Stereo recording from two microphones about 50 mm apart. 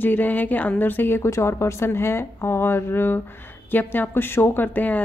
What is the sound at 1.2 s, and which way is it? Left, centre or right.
A woman's voice, left.